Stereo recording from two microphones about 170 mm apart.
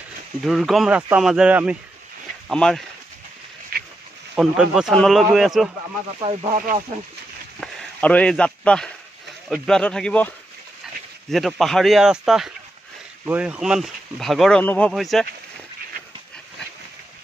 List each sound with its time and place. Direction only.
0.5 s speech: centre (ahead or behind)
3.7 s pig: 60° right (ahead or behind)
4.4 s speech: 5° right (ahead or behind)
6.5 s speech: 50° right (ahead or behind)
7.6 s speech: 10° left (ahead or behind)